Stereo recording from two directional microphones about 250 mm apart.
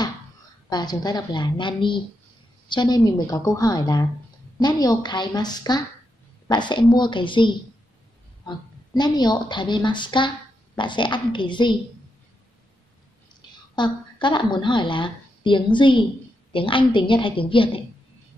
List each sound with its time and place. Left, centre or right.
0.7 s a woman's voice: centre
13.4 s a sound: centre
13.7 s a woman's voice: centre